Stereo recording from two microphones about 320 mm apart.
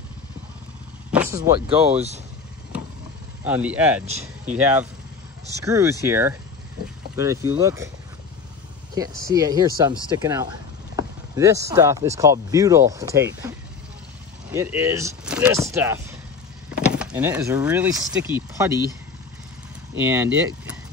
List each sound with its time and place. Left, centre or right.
1.1 s speech: centre
3.4 s speech: centre
9.3 s speech: centre
20.0 s speech: centre